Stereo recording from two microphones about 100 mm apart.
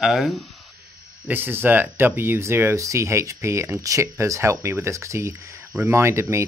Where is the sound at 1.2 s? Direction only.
20° right (ahead or behind).